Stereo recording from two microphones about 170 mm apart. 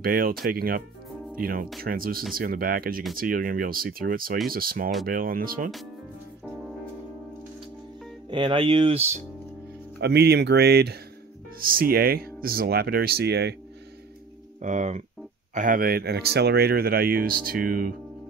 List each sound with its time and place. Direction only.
0.0 s speech: 60° right (ahead or behind)
8.3 s speech: 30° right (ahead or behind)
9.9 s speech: 75° right (ahead or behind)
11.6 s speech: 60° right (ahead or behind); by 13.6 s 75° right (ahead or behind)
14.6 s speech: 45° right (ahead or behind)